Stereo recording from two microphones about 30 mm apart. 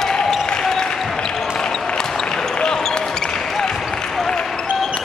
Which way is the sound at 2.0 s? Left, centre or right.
Centre.